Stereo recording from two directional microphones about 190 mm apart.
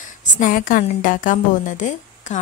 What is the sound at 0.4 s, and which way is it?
A woman's voice, 45° left (ahead or behind).